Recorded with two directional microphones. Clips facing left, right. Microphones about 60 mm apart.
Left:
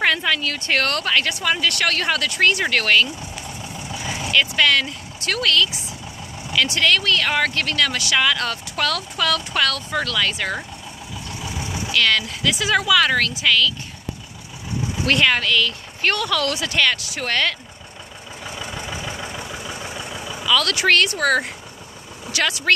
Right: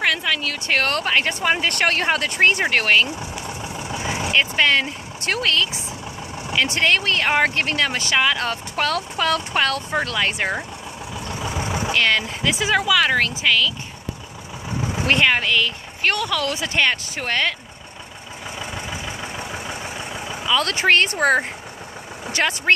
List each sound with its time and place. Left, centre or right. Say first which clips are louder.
0.0 s a woman's voice: left 2 dB; centre
3.9 s vehicle: even; right
5.3 s speech: left 1 dB; right
6.7 s speech: left 1 dB; right
11.2 s vehicle: right 4 dB; right
11.9 s speech: left 1 dB; right
14.8 s vehicle: right 1 dB; right
15.0 s a woman's voice: even; centre
16.5 s speech: even; right
17.2 s a woman's voice: left 1 dB; centre
18.5 s vehicle: even; centre
20.4 s speech: even; right